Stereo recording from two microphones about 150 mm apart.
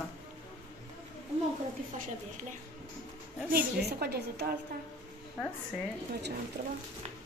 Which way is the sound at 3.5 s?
90° right.